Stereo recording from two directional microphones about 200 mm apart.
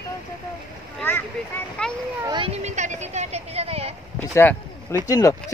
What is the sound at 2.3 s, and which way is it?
Speech, 25° right (ahead or behind).